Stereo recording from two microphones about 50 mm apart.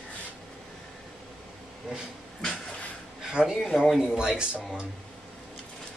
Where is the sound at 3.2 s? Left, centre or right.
Centre.